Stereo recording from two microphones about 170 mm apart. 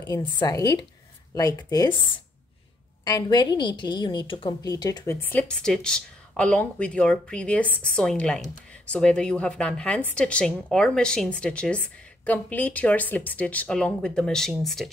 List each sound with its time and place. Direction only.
0.0 s speech: 20° left (ahead or behind)
3.1 s a woman's voice: 25° left (ahead or behind); by 14.9 s centre (ahead or behind)